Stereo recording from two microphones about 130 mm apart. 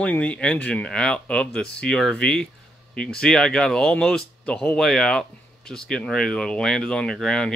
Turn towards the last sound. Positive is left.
turn(degrees=5)  # may be behind; listen again after turning